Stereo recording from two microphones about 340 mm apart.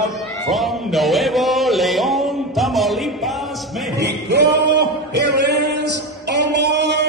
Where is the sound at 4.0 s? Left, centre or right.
Right.